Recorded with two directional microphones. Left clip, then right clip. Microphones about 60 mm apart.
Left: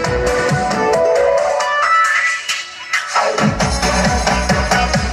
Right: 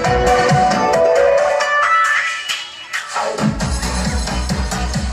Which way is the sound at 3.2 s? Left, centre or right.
Left.